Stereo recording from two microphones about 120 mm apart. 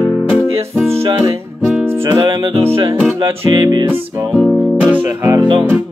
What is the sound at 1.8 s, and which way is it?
Music, 20° right (ahead or behind).